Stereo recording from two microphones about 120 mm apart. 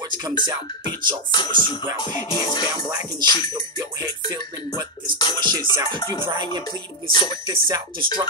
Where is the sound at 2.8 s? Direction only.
30° right (ahead or behind).